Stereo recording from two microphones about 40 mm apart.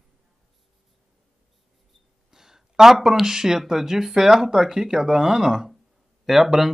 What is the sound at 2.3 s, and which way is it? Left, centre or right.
Speech, centre.